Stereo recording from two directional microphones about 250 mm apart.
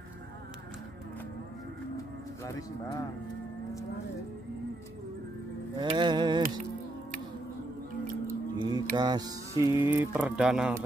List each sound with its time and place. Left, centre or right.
2.4 s speech: centre
5.8 s speech: centre
8.5 s mantra: centre
8.9 s speech: centre